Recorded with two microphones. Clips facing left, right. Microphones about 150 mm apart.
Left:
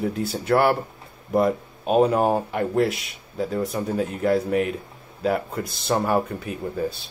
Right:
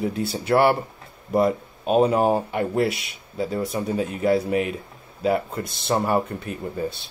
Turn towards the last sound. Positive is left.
turn(degrees=0)  # may be behind; listen again after turning